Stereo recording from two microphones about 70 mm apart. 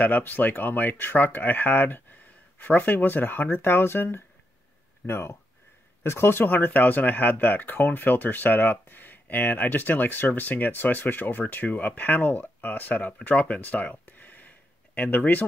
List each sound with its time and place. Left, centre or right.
0.0 s speech: left